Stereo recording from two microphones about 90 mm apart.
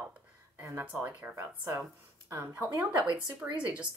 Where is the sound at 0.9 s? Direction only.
20° right (ahead or behind).